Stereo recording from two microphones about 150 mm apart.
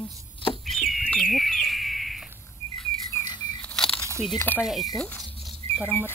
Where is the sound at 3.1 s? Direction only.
15° left (ahead or behind).